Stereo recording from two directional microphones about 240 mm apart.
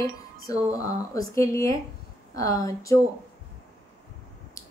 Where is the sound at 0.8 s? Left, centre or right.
Centre.